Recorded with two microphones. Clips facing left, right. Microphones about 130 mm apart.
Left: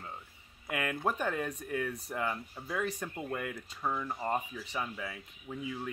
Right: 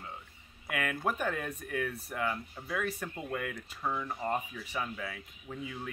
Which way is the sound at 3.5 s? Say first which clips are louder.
Even; 5° left (ahead or behind).